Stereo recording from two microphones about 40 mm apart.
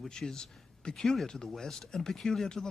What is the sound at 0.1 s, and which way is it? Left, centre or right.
A man's voice, centre.